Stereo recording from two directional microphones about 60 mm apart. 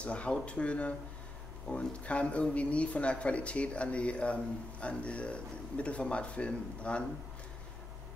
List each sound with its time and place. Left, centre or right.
0.0 s speech: centre